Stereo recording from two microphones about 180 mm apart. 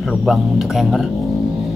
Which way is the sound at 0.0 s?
Centre (ahead or behind).